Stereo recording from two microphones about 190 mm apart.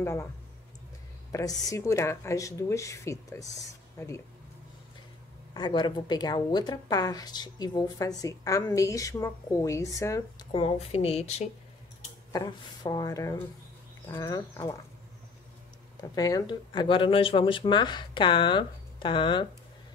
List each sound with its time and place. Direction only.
0.0 s speech: 15° left (ahead or behind)
1.3 s speech: 20° left (ahead or behind)
5.5 s speech: 25° left (ahead or behind)
10.5 s a woman's voice: 30° left (ahead or behind)
12.3 s speech: 20° left (ahead or behind)
16.0 s speech: 20° left (ahead or behind)